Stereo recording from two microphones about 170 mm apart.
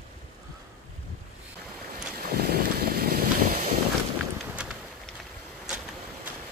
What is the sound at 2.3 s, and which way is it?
Vehicle, 65° right (ahead or behind).